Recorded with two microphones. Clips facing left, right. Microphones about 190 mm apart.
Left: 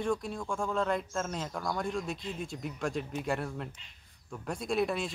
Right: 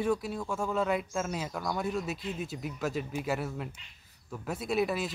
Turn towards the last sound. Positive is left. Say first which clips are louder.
# right 1 dB
turn(degrees=-5)  # may be behind; listen again after turning